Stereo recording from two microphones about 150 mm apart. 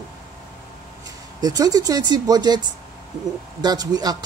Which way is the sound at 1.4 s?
25° right (ahead or behind).